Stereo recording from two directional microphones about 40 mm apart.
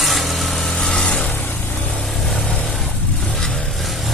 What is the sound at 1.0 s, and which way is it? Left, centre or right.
Vehicle, left.